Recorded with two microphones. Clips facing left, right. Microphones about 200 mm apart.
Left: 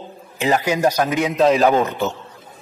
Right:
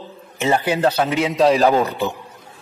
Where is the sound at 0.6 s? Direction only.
15° left (ahead or behind).